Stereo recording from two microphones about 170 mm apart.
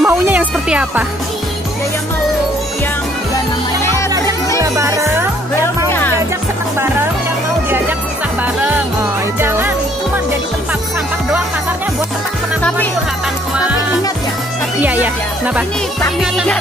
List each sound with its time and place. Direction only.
0.0 s music: 10° right (ahead or behind)
4.6 s music: 20° right (ahead or behind)
5.9 s music: 10° left (ahead or behind)
9.4 s music: 15° right (ahead or behind)
14.8 s speech: 10° right (ahead or behind)
16.2 s music: centre (ahead or behind)